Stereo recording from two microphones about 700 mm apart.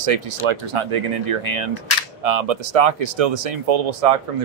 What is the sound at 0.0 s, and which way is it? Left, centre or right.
Speech, right.